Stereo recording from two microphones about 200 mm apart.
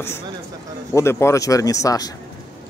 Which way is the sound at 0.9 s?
15° left (ahead or behind).